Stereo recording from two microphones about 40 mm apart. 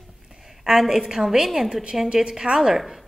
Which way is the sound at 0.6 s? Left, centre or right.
Centre.